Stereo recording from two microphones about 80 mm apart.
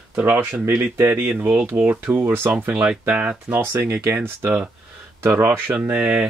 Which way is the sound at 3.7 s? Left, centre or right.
Right.